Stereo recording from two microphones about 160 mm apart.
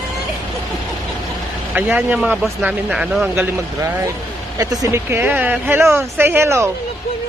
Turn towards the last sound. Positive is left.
turn(degrees=-15)  # may be behind; listen again after turning